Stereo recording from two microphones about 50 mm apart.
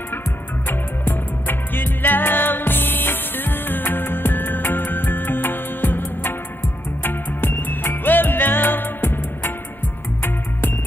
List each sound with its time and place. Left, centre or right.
0.7 s music: left